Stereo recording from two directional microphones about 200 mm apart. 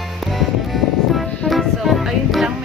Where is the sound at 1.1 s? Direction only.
Centre (ahead or behind).